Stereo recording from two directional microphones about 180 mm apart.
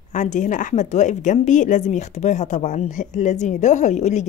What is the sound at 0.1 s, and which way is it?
Speech, 45° left (ahead or behind).